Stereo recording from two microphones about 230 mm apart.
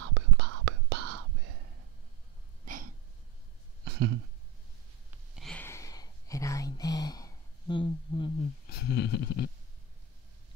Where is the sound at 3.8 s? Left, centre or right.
Right.